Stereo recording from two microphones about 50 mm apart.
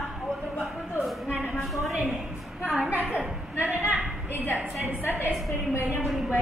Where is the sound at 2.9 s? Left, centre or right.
Right.